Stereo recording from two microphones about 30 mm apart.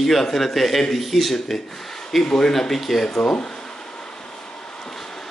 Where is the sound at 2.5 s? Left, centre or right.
Centre.